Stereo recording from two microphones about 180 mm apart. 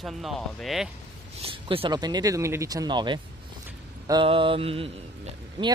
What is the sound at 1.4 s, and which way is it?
Speech, 30° right (ahead or behind).